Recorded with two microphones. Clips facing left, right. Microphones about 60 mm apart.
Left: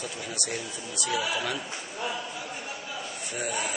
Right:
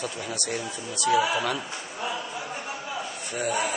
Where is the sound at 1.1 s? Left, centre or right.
Right.